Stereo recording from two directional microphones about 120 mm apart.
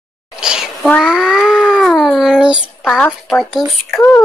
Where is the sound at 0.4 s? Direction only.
5° right (ahead or behind).